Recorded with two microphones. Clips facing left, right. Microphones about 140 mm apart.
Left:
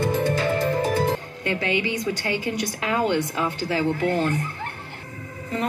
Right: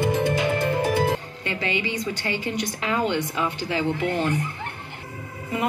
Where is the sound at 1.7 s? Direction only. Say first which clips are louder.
Left 2 dB; 55° left (ahead or behind).